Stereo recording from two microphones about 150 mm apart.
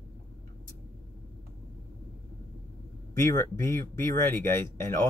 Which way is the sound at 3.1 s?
15° left (ahead or behind).